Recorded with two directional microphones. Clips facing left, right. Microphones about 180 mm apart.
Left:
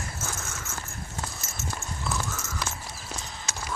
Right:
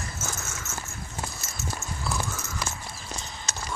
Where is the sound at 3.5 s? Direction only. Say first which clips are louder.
Even; 10° left (ahead or behind).